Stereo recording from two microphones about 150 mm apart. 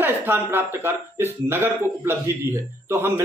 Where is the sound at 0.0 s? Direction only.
15° right (ahead or behind).